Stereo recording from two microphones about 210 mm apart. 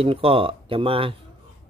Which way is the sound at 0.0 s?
25° right (ahead or behind).